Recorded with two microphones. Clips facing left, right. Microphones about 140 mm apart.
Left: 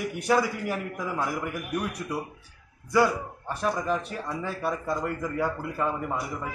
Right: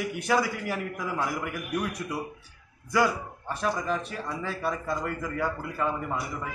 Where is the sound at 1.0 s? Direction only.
5° left (ahead or behind).